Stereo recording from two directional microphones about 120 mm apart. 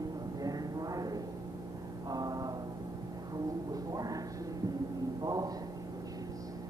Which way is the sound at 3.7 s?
30° right (ahead or behind).